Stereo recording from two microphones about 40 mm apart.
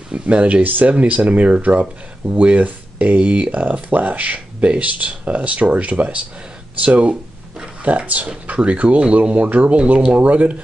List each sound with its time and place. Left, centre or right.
0.1 s speech: right
0.6 s speech: right
10.1 s speech: right